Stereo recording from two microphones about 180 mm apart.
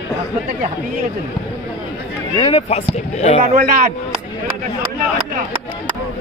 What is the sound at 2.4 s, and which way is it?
Speech, 30° left (ahead or behind).